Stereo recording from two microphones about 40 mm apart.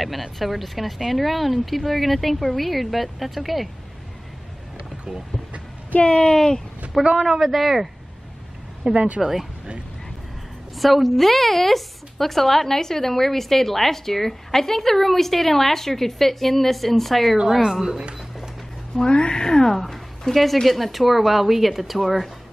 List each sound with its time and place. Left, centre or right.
0.0 s a woman's voice: centre
6.2 s speech: centre
7.2 s a woman's voice: centre
8.9 s a woman's voice: right
9.2 s a woman's voice: centre
10.8 s a woman's voice: centre
17.4 s a woman's voice: centre
17.9 s a sound: right
18.9 s a woman's voice: left; by 22.1 s centre